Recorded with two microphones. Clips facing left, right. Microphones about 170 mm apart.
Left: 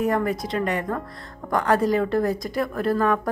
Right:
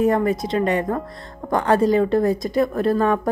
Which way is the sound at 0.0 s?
25° right (ahead or behind).